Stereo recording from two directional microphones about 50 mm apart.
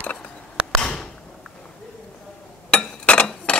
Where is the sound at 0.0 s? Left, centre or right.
Left.